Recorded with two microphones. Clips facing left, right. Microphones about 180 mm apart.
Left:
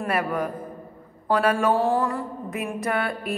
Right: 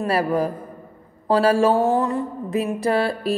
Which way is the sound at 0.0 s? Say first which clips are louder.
Right 5 dB; 30° right (ahead or behind).